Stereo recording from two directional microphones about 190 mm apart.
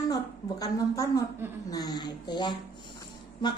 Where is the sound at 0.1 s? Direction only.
20° left (ahead or behind).